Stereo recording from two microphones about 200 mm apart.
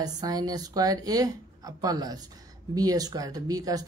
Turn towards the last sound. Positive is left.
turn(degrees=-20)  # may be behind; listen again after turning